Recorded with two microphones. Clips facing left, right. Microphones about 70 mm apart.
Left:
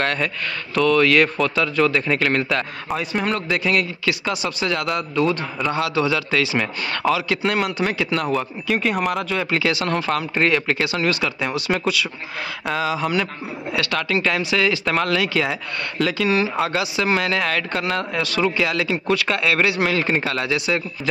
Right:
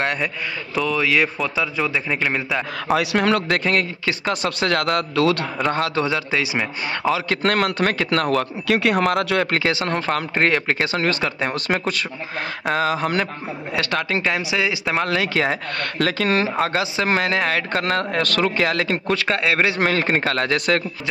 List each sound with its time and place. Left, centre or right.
0.0 s a man's voice: centre
2.9 s a man's voice: right
3.4 s speech: right
4.4 s speech: right
5.7 s a man's voice: right
7.4 s speech: right
9.5 s speech: right
13.7 s a man's voice: right
15.0 s speech: right